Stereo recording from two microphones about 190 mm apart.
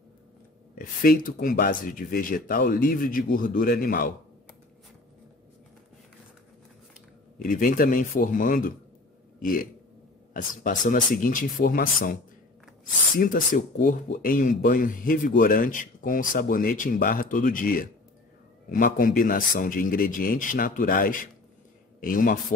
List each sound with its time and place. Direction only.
0.7 s speech: 50° left (ahead or behind)
7.3 s speech: 45° left (ahead or behind)
13.2 s speech: 45° left (ahead or behind)